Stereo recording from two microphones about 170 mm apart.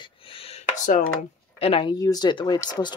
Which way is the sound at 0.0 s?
35° left (ahead or behind).